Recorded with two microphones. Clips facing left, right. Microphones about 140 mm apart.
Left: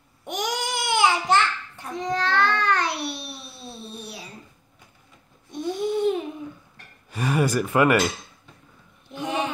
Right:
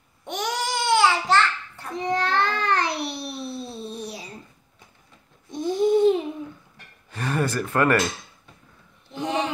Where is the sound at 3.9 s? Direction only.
15° right (ahead or behind).